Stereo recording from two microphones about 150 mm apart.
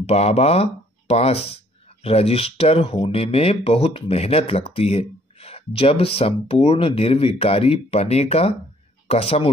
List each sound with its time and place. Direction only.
0.0 s speech: 45° left (ahead or behind)